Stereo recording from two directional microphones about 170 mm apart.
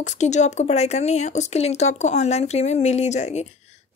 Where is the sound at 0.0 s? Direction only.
45° left (ahead or behind).